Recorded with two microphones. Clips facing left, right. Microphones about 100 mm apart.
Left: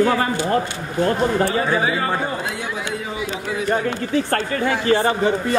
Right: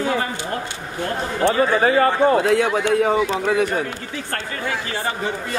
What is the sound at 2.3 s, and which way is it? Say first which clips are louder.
Speech: right 9 dB; 65° right (ahead or behind).